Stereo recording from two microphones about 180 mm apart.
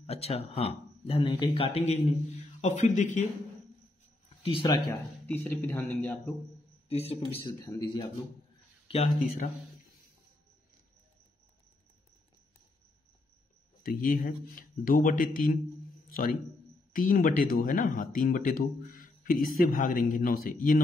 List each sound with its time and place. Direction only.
0.0 s speech: 35° left (ahead or behind)
4.4 s speech: 30° left (ahead or behind)
5.2 s speech: 10° left (ahead or behind)
6.9 s speech: 35° left (ahead or behind)
8.8 s speech: 35° left (ahead or behind)
13.8 s a man's voice: 50° left (ahead or behind)